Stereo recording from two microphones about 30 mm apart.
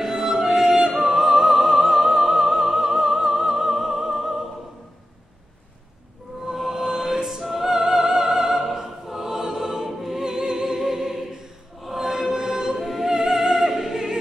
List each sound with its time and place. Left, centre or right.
0.0 s music: centre
6.5 s music: centre
7.2 s opera: centre
9.8 s music: centre
12.7 s music: centre